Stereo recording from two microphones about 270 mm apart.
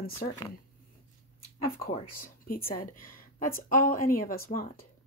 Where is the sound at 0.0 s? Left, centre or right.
Left.